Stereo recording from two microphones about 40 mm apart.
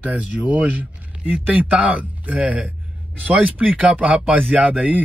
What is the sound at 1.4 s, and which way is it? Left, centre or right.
Speech, right.